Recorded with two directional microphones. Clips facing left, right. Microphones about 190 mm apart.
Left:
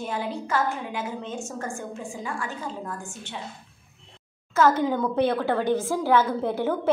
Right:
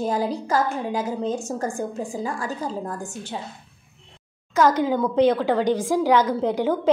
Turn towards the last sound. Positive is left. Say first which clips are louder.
# right 3 dB
turn(degrees=-15)  # may be behind; listen again after turning